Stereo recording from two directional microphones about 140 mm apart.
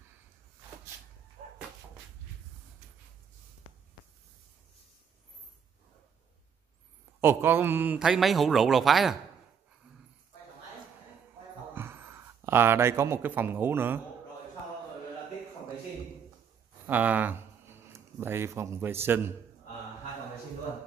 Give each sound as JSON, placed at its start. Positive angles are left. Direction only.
{"t": 7.2, "sound": "a man's voice", "side_deg": -15}
{"t": 11.7, "sound": "speech", "side_deg": -15}
{"t": 16.8, "sound": "speech", "side_deg": -10}